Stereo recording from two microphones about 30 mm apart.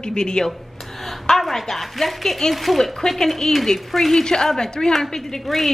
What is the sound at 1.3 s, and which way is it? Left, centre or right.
Speech, centre.